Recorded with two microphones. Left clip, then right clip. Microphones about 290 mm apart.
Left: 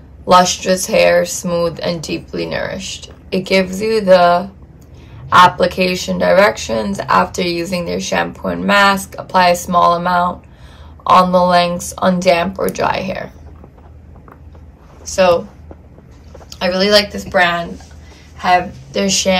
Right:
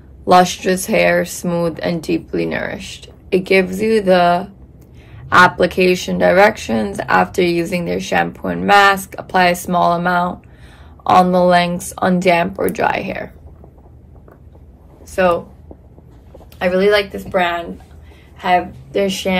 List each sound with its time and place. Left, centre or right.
0.4 s speech: right
5.6 s speech: right
16.6 s a woman's voice: right